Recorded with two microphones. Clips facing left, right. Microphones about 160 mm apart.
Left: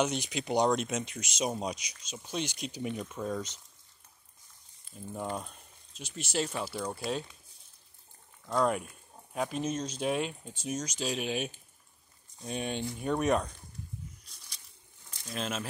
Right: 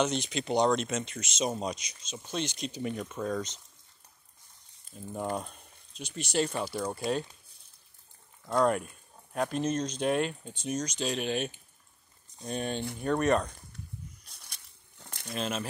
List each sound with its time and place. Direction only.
0.0 s speech: 10° left (ahead or behind)
4.9 s speech: 5° right (ahead or behind)
8.5 s speech: centre (ahead or behind)
14.2 s crumpling: 60° right (ahead or behind)
15.3 s speech: centre (ahead or behind)